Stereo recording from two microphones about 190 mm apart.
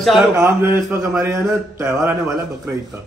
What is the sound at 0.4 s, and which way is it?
A man's voice, 10° right (ahead or behind).